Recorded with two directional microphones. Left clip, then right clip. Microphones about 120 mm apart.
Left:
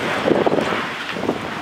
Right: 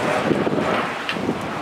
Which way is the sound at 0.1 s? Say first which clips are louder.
Left 7 dB; 25° left (ahead or behind).